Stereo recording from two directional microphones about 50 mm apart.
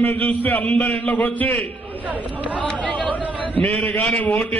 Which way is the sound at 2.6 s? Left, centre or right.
Left.